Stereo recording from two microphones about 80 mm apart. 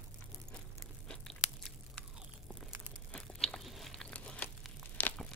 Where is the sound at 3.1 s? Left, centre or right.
Centre.